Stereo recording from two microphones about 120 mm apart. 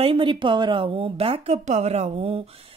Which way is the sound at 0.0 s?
50° right (ahead or behind).